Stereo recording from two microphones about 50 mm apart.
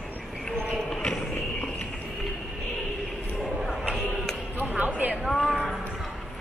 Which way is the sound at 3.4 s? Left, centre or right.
Centre.